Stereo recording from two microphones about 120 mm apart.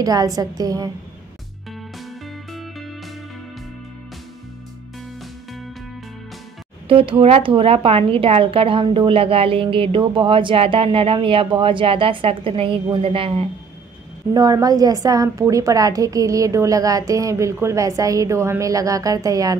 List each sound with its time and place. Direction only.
0.0 s a woman's voice: 30° right (ahead or behind)
2.0 s music: centre (ahead or behind)
6.9 s a woman's voice: 50° right (ahead or behind)
14.3 s a woman's voice: 30° right (ahead or behind)